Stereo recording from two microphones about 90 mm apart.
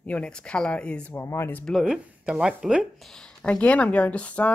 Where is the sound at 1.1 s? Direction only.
30° left (ahead or behind).